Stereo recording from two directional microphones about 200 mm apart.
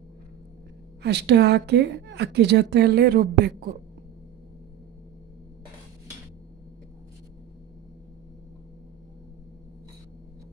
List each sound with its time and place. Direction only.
1.0 s a woman's voice: 60° right (ahead or behind)